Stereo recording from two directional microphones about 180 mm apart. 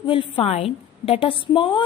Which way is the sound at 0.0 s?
30° left (ahead or behind).